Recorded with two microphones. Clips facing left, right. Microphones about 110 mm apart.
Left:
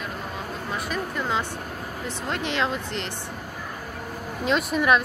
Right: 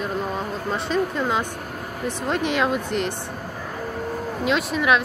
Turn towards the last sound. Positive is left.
turn(degrees=0)  # may be behind; listen again after turning